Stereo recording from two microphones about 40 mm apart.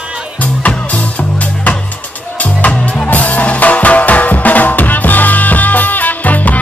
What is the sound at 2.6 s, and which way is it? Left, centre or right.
Music, left.